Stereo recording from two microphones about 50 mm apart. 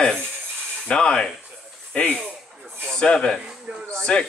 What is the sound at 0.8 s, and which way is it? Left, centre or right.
Rub, centre.